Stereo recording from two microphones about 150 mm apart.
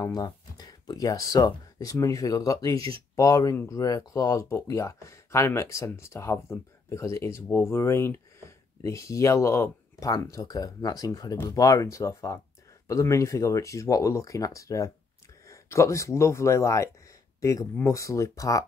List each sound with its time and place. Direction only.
0.0 s speech: 25° left (ahead or behind)